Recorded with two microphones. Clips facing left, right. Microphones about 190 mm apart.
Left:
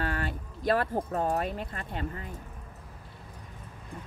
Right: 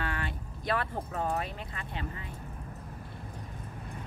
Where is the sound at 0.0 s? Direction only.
40° left (ahead or behind).